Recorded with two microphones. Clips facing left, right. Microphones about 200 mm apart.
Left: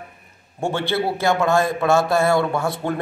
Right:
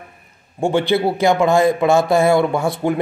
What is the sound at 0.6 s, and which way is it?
Speech, 15° right (ahead or behind).